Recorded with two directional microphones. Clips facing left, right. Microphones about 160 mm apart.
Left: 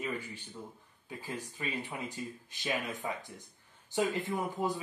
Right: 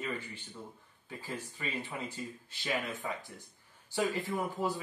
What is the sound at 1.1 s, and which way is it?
A man's voice, 15° left (ahead or behind).